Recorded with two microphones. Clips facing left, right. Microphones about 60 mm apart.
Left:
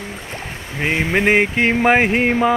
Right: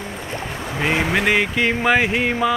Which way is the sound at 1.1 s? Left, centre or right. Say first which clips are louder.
Left 3 dB; left.